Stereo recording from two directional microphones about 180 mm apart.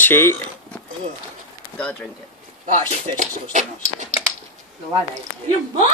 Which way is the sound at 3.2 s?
45° right (ahead or behind).